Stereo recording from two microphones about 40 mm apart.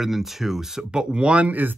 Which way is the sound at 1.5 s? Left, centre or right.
Right.